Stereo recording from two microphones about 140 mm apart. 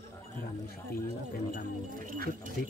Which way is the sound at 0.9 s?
90° left.